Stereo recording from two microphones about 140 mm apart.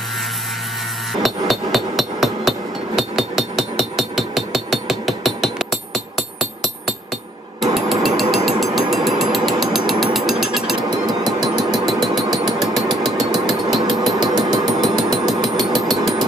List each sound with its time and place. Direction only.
1.2 s hammer: centre (ahead or behind)
7.6 s hammer: centre (ahead or behind)
8.5 s ratchet: centre (ahead or behind)
10.8 s hammer: 30° right (ahead or behind)
11.4 s engine: centre (ahead or behind)
12.5 s a sound: centre (ahead or behind)
13.7 s mechanisms: centre (ahead or behind)
14.2 s hammer: 30° right (ahead or behind)
14.7 s hammer: centre (ahead or behind)